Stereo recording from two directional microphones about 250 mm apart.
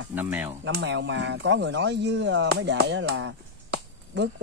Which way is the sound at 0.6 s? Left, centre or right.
Right.